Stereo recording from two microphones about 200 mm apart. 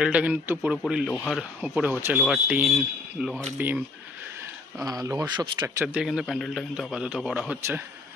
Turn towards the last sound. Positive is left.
turn(degrees=0)  # may be behind; listen again after turning